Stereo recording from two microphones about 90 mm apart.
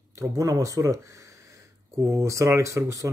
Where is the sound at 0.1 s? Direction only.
35° right (ahead or behind).